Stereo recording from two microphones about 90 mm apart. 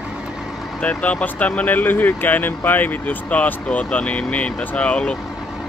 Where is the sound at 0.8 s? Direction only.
15° left (ahead or behind).